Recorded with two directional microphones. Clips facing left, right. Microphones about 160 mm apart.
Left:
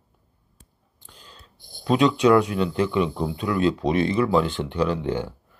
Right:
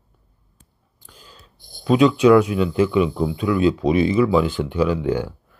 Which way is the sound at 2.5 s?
10° right (ahead or behind).